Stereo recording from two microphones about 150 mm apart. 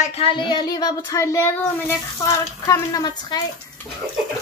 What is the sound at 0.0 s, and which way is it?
Speech, 40° left (ahead or behind).